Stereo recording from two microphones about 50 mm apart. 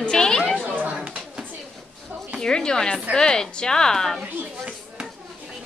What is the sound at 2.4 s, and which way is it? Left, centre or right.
A woman's voice, centre.